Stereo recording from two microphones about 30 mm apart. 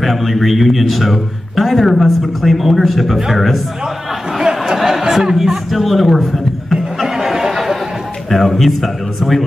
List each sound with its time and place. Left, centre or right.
0.0 s a man's voice: centre
4.3 s a sound: centre
5.3 s chuckle: centre
8.3 s a man's voice: centre